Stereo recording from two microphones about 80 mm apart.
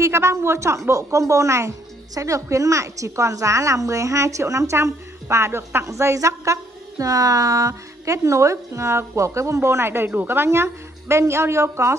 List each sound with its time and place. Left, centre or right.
0.0 s a woman's voice: right